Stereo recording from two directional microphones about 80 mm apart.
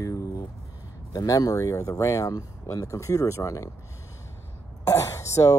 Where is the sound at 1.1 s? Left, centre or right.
Left.